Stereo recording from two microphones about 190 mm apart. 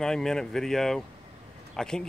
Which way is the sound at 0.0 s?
5° left (ahead or behind).